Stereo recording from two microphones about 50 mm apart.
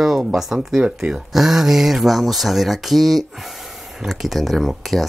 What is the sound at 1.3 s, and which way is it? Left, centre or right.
Speech, centre.